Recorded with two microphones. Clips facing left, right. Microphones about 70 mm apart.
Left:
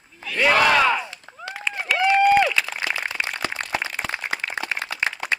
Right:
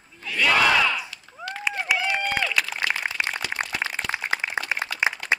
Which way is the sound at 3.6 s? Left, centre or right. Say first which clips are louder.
Right 2 dB; centre.